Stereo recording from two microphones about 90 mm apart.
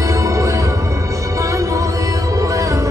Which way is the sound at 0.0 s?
35° right (ahead or behind).